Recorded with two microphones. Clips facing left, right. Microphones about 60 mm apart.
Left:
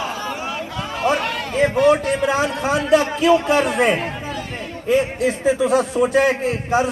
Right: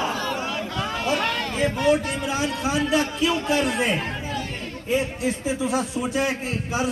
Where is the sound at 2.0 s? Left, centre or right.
Left.